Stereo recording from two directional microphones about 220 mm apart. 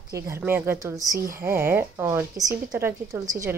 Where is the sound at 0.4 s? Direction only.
10° right (ahead or behind).